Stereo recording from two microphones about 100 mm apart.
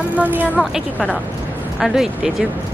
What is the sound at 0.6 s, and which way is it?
Speech, 5° left (ahead or behind).